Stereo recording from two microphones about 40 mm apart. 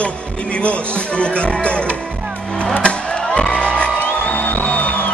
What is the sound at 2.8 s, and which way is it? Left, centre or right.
Music, left.